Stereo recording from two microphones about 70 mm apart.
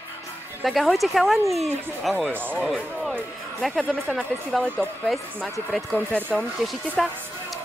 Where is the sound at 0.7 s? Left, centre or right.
Centre.